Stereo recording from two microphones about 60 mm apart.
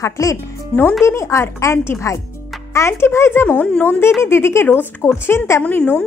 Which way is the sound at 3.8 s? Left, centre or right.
Left.